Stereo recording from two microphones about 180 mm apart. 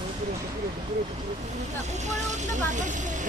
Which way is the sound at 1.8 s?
40° right (ahead or behind).